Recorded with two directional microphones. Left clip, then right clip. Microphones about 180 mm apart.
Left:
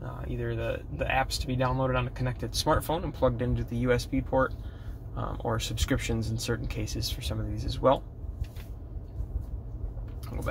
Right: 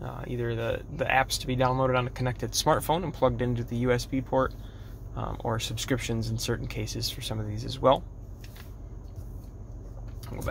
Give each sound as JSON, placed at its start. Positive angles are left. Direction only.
{"t": 0.0, "sound": "speech", "side_deg": -30}